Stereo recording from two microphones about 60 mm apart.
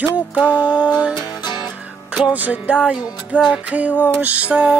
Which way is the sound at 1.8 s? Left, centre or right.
Right.